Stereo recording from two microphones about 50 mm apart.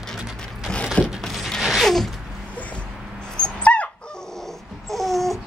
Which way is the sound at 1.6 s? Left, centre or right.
Centre.